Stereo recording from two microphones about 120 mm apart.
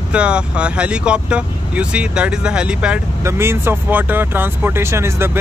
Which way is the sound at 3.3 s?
20° right (ahead or behind).